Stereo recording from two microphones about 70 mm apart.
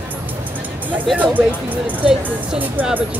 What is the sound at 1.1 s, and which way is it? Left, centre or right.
Speech, right.